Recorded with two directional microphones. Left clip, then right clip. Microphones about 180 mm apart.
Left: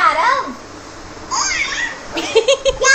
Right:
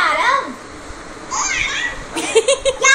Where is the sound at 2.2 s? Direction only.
Centre (ahead or behind).